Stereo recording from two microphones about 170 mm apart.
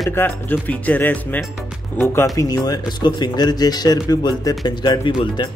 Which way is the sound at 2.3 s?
20° left (ahead or behind).